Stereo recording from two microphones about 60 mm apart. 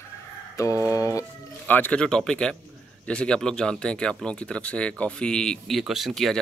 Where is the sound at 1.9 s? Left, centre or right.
Centre.